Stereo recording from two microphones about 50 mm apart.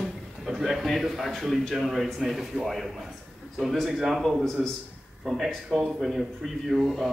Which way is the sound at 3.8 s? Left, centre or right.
Centre.